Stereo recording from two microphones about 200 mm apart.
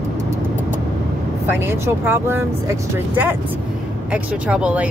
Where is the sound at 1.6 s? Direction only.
10° right (ahead or behind).